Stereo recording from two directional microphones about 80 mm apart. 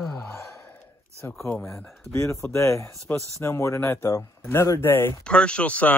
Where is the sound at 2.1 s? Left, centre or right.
Left.